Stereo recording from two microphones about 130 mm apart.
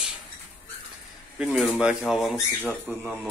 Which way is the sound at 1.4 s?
5° right (ahead or behind).